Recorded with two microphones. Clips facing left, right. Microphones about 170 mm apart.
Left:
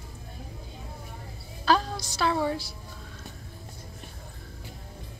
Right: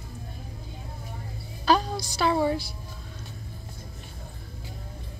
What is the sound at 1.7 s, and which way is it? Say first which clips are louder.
Music: right 2 dB; centre (ahead or behind).